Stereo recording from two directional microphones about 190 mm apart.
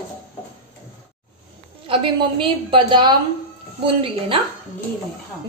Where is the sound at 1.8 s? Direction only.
30° right (ahead or behind).